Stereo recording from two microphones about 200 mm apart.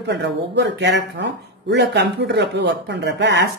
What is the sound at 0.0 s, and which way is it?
Speech, 60° right (ahead or behind).